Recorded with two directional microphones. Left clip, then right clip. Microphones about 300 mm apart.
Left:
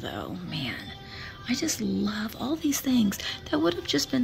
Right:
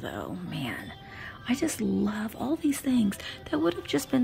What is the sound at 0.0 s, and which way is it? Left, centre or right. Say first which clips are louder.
Speech: left 1 dB; centre.